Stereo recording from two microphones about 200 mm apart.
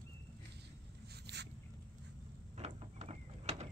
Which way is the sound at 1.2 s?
60° right (ahead or behind).